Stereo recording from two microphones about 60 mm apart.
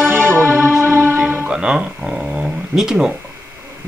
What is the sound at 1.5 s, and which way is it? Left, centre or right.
Music, centre.